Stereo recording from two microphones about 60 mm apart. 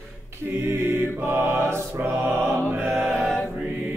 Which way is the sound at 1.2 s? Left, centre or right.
Right.